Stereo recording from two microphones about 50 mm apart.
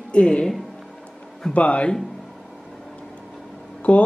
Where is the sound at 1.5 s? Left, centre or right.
Left.